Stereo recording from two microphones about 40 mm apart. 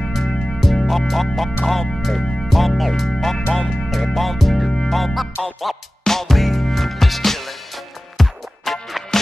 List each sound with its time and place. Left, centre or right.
0.1 s music: centre
2.0 s speech: centre
2.4 s music: centre
3.5 s speech: centre
4.6 s music: centre
4.9 s music: centre
5.4 s speech: centre
6.0 s music: centre